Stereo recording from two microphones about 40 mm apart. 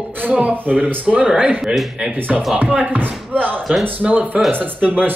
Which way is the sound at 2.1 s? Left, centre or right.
Right.